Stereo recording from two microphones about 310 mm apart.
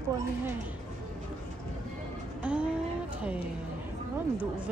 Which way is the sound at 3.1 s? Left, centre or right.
Centre.